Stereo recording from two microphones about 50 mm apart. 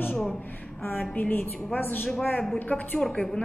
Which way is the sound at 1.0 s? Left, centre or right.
Left.